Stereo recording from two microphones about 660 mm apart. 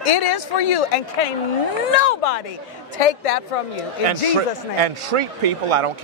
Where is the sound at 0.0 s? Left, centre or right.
Left.